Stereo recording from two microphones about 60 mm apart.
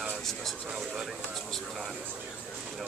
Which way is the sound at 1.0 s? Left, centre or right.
Centre.